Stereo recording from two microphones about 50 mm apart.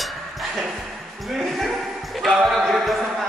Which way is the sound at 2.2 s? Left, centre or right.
Centre.